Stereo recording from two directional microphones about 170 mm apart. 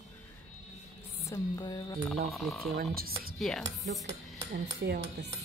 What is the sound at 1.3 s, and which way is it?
Music, 20° left (ahead or behind).